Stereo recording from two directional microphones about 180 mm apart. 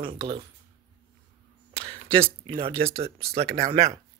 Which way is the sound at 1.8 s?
30° right (ahead or behind).